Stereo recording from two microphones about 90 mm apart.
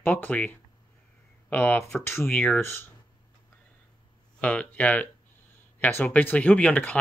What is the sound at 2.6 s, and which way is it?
Speech, 25° left (ahead or behind).